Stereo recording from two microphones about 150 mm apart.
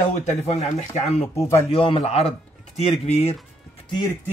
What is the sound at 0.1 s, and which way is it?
Speech, 50° left (ahead or behind).